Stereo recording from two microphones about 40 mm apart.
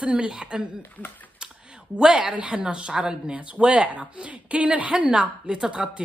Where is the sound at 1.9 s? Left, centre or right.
Right.